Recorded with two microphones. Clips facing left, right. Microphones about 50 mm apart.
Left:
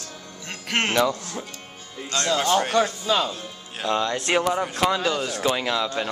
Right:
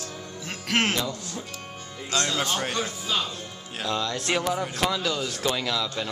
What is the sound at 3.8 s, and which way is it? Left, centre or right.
Speech, left.